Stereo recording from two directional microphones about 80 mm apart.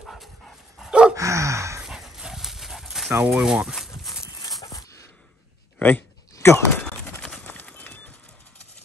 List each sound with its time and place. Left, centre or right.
0.0 s dog: centre
1.1 s gasp: right
1.8 s dog: centre
3.3 s speech: centre
4.4 s dog: left
5.8 s speech: left
7.4 s clip-clop: left